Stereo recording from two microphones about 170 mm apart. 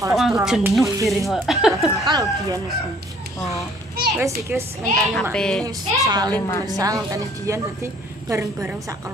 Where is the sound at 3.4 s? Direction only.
20° left (ahead or behind).